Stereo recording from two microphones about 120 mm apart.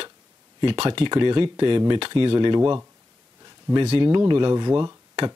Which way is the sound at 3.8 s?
55° right (ahead or behind).